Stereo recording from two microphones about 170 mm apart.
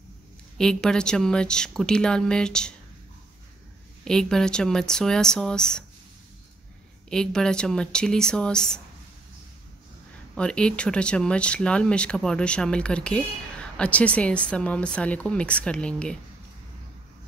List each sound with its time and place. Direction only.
0.6 s a woman's voice: 5° left (ahead or behind)
4.0 s a woman's voice: 5° left (ahead or behind)
7.1 s a woman's voice: 5° left (ahead or behind)
10.3 s speech: 5° left (ahead or behind)